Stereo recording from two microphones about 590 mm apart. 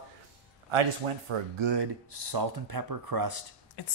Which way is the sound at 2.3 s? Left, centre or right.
Right.